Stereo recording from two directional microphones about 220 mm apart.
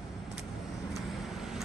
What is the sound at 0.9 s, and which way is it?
Vehicle, centre (ahead or behind).